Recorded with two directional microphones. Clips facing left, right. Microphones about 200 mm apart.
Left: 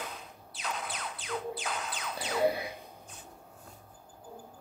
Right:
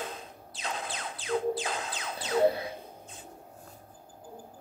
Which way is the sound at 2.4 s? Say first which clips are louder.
Right 3 dB; 10° left (ahead or behind).